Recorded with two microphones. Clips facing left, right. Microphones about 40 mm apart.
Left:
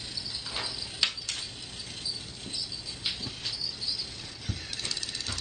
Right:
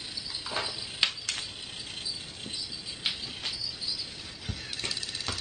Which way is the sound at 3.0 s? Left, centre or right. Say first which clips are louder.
Right 2 dB; right.